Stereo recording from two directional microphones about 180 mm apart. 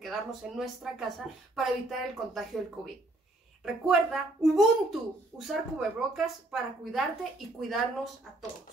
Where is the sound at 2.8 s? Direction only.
Centre (ahead or behind).